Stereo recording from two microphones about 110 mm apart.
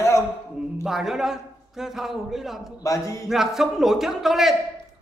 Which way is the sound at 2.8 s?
30° left (ahead or behind).